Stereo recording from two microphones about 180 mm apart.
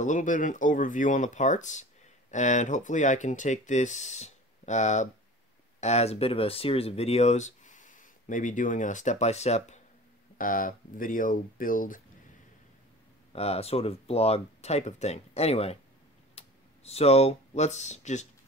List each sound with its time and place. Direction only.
0.0 s speech: 45° left (ahead or behind)
10.3 s speech: 50° left (ahead or behind)
13.3 s speech: 35° left (ahead or behind)